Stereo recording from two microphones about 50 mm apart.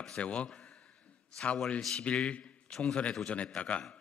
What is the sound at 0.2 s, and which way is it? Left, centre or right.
Speech, left.